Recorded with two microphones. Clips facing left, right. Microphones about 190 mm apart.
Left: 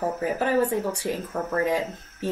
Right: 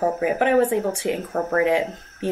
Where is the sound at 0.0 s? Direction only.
20° right (ahead or behind).